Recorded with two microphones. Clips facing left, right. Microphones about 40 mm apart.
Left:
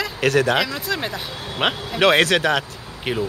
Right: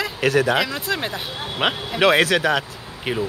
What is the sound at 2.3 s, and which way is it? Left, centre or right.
Speech, centre.